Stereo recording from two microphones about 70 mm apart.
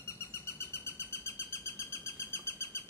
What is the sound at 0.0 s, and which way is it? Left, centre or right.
Bird, left.